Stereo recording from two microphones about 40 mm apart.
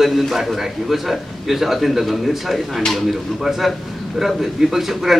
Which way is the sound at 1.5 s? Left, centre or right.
Centre.